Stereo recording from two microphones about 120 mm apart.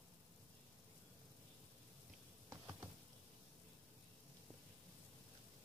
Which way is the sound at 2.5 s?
25° right (ahead or behind).